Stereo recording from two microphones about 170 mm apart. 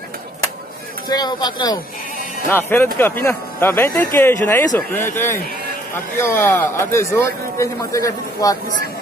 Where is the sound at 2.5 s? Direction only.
15° left (ahead or behind).